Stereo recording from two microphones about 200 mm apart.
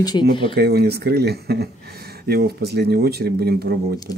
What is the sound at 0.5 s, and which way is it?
Speech, 55° right (ahead or behind).